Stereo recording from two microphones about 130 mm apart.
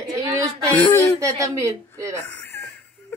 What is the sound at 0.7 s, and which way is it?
Speech, 10° left (ahead or behind).